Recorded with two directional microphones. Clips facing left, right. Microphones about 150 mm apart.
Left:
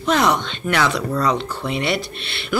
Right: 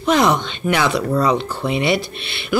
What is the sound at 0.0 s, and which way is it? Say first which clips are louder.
Speech: right 2 dB; 25° right (ahead or behind).